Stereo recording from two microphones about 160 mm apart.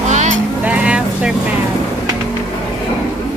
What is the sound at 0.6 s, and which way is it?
Vehicle, 10° right (ahead or behind).